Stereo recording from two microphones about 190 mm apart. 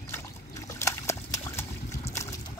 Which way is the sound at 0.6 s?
15° left (ahead or behind).